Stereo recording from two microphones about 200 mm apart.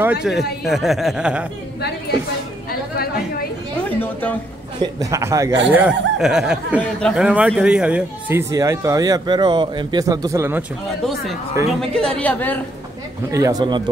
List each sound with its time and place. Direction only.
0.0 s speech: 5° right (ahead or behind)
4.0 s a woman's voice: 10° left (ahead or behind)
4.7 s speech: 15° right (ahead or behind); by 7.2 s 5° left (ahead or behind)
7.2 s speech: 5° right (ahead or behind)
11.8 s a woman's voice: 5° left (ahead or behind)
13.3 s speech: 15° right (ahead or behind)